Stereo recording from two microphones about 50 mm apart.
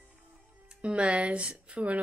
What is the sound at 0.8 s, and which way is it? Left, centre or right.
Speech, right.